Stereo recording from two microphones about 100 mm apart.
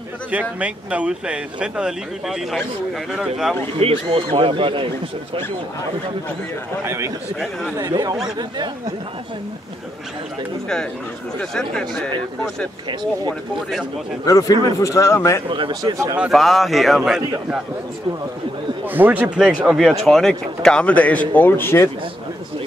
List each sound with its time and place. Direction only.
0.3 s a man's voice: 15° right (ahead or behind)
3.8 s speech: 75° right (ahead or behind)
6.8 s a man's voice: 25° right (ahead or behind)
7.7 s a man's voice: 40° right (ahead or behind)
11.5 s a man's voice: 5° left (ahead or behind)
14.2 s speech: 35° left (ahead or behind)
15.5 s a man's voice: 45° right (ahead or behind)
16.2 s a man's voice: centre (ahead or behind)
18.9 s speech: 20° right (ahead or behind)
19.8 s speech: 5° left (ahead or behind); by 21.9 s 25° left (ahead or behind)